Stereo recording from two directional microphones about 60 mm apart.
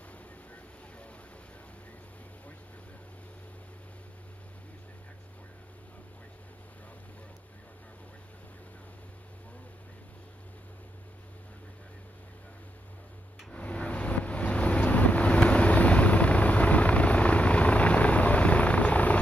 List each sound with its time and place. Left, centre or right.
13.5 s vehicle: left